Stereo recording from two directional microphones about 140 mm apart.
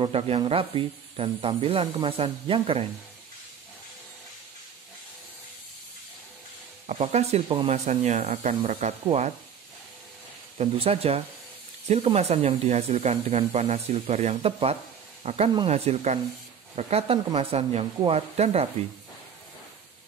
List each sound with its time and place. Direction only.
0.0 s speech: 40° right (ahead or behind)
6.9 s speech: 50° right (ahead or behind)
10.6 s speech: 45° right (ahead or behind)